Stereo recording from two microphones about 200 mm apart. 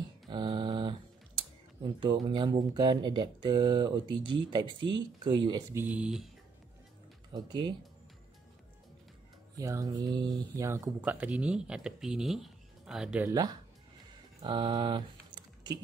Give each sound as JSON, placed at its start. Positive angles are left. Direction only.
{"t": 0.3, "sound": "a sound", "side_deg": -25}
{"t": 2.0, "sound": "speech", "side_deg": -20}
{"t": 5.8, "sound": "speech", "side_deg": -5}
{"t": 7.4, "sound": "speech", "side_deg": -20}
{"t": 9.6, "sound": "speech", "side_deg": -15}
{"t": 13.3, "sound": "speech", "side_deg": -20}
{"t": 14.4, "sound": "typing", "side_deg": -20}